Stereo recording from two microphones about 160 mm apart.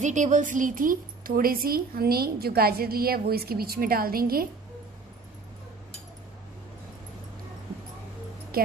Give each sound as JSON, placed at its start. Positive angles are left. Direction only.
{"t": 0.0, "sound": "a woman's voice", "side_deg": -50}
{"t": 8.5, "sound": "speech", "side_deg": -70}